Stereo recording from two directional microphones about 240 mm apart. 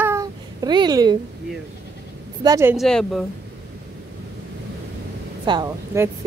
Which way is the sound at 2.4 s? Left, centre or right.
Centre.